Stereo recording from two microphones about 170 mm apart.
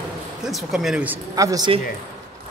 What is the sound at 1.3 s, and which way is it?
Speech, 20° right (ahead or behind).